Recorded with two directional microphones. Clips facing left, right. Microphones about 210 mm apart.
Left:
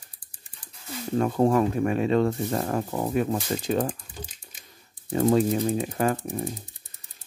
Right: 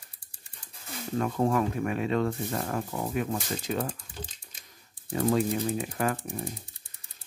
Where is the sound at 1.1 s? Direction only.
35° left (ahead or behind).